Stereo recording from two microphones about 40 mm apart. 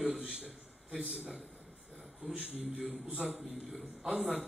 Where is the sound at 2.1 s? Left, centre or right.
Centre.